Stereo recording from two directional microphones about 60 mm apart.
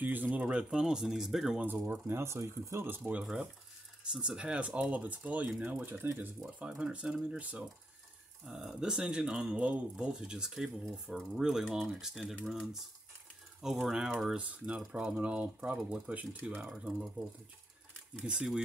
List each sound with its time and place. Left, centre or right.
0.0 s speech: right
0.7 s speech: centre
1.7 s speech: right
2.1 s speech: right
3.0 s speech: right
6.7 s speech: centre
8.5 s speech: centre
9.6 s speech: right
14.3 s speech: right
18.2 s speech: centre